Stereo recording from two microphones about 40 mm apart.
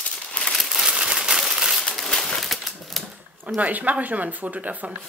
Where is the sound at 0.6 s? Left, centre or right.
Centre.